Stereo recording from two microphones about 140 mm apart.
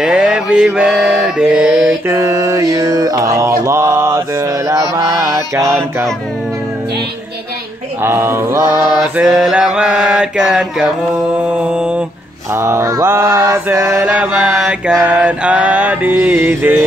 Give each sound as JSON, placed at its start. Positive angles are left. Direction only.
{"t": 0.0, "sound": "mantra", "side_deg": -5}
{"t": 2.0, "sound": "mantra", "side_deg": -20}
{"t": 8.0, "sound": "mantra", "side_deg": -15}
{"t": 8.7, "sound": "mantra", "side_deg": 30}
{"t": 9.1, "sound": "mantra", "side_deg": 0}
{"t": 12.5, "sound": "mantra", "side_deg": -20}
{"t": 14.0, "sound": "mantra", "side_deg": -10}